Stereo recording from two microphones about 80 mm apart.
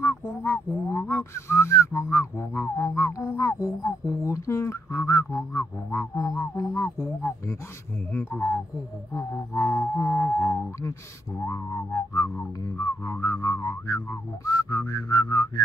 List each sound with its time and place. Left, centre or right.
0.0 s a sound: left
8.1 s speech: left
9.5 s music: left
12.7 s whistling: left